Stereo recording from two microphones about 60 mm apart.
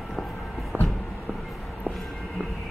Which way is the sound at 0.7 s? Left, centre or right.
Right.